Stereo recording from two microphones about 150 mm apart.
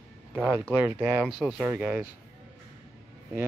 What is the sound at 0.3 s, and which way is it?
Speech, 15° right (ahead or behind).